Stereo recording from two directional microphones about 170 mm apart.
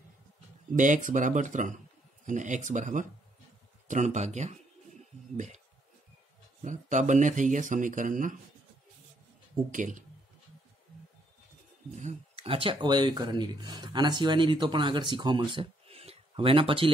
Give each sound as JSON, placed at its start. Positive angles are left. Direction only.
{"t": 0.7, "sound": "speech", "side_deg": -50}
{"t": 6.6, "sound": "speech", "side_deg": -45}
{"t": 11.9, "sound": "speech", "side_deg": -40}